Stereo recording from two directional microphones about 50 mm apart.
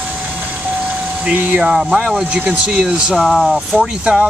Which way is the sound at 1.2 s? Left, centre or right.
Right.